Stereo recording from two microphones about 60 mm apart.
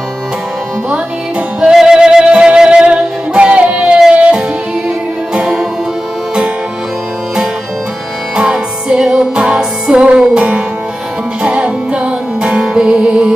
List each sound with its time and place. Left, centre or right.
1.6 s music: centre
8.4 s music: centre